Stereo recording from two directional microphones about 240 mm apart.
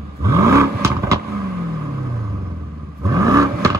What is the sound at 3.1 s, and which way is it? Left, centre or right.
Vehicle, centre.